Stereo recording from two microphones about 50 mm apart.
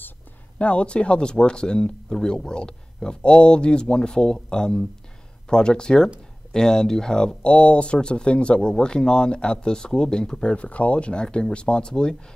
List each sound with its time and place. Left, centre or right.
0.6 s speech: left